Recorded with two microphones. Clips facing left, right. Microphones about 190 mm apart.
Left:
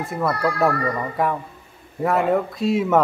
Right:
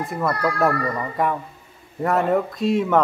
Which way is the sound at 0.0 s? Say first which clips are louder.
Left 1 dB; centre (ahead or behind).